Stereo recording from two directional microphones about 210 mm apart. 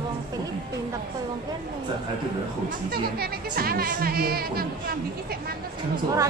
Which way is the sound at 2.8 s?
45° right (ahead or behind).